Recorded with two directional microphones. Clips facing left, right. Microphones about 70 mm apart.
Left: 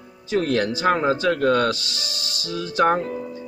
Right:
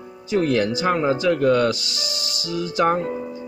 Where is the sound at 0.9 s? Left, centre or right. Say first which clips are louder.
Left 1 dB; left.